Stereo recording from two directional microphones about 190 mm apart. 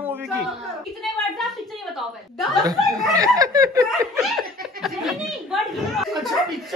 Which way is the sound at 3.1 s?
20° right (ahead or behind).